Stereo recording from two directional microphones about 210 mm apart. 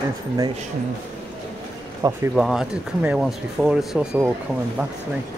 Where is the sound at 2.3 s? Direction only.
Centre (ahead or behind).